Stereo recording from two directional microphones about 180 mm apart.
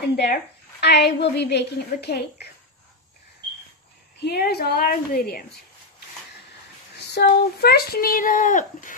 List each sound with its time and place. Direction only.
0.1 s a woman's voice: 65° left (ahead or behind)
4.2 s a woman's voice: 65° left (ahead or behind)
7.1 s speech: 65° left (ahead or behind); by 8.9 s 45° left (ahead or behind)